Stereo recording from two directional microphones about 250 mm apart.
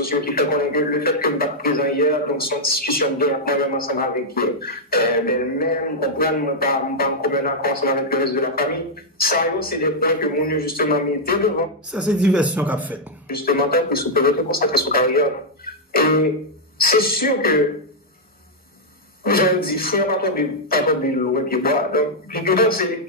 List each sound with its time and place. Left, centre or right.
0.0 s a man's voice: left
11.9 s a man's voice: centre
13.3 s a man's voice: left
19.2 s a man's voice: left